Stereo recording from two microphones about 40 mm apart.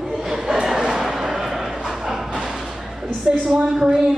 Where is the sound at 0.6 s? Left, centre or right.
Centre.